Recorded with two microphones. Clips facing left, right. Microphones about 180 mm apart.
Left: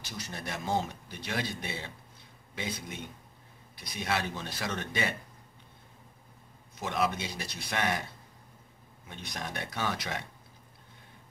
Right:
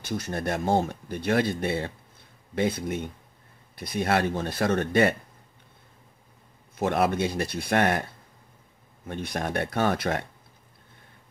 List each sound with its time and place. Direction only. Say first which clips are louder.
0.0 s speech: right 11 dB; 55° right (ahead or behind)
6.8 s speech: right 8 dB; 55° right (ahead or behind)
9.0 s speech: right 10 dB; 55° right (ahead or behind)